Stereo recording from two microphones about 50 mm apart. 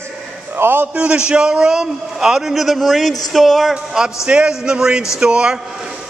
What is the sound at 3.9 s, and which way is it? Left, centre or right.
A man's voice, centre.